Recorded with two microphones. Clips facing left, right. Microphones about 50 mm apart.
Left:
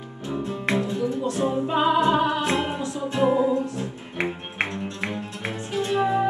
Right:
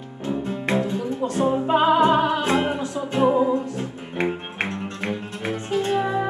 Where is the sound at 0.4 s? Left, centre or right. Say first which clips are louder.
Right 1 dB; right.